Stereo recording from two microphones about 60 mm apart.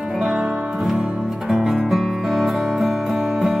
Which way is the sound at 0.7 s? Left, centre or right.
Centre.